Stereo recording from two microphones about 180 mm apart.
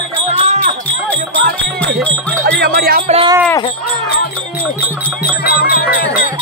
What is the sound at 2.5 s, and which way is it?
Music, 65° right (ahead or behind).